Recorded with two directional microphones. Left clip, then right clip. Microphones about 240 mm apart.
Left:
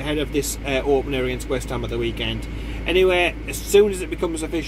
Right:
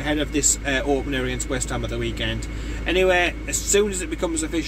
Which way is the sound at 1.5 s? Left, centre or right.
Right.